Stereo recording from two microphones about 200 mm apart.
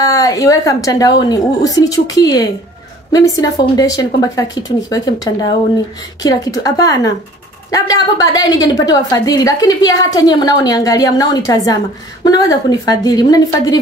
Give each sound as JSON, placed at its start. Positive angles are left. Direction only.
{"t": 0.0, "sound": "a woman's voice", "side_deg": 15}